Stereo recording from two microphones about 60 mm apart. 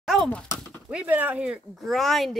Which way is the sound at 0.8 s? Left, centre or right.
Centre.